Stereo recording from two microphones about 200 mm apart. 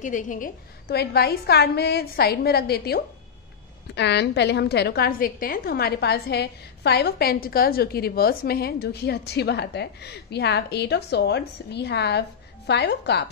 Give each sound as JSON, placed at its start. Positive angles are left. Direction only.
{"t": 0.0, "sound": "a woman's voice", "side_deg": 40}